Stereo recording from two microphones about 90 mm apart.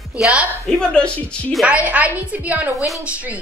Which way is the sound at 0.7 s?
10° left (ahead or behind).